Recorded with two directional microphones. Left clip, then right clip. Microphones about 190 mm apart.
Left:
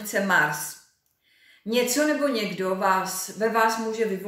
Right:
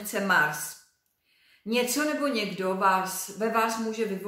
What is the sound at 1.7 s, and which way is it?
A woman's voice, 25° right (ahead or behind).